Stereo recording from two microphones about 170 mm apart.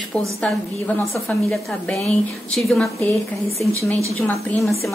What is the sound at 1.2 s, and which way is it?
A woman's voice, centre (ahead or behind).